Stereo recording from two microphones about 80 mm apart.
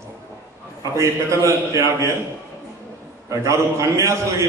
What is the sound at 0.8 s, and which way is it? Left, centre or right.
A man's voice, right.